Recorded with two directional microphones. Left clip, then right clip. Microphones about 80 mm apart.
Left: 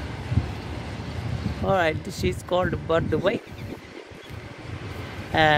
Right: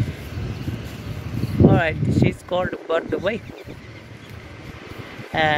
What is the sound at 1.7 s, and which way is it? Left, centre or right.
Speech, left.